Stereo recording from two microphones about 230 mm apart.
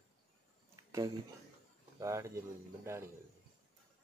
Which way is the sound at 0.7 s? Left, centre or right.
Centre.